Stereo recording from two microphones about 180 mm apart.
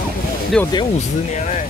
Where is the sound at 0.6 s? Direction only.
5° left (ahead or behind).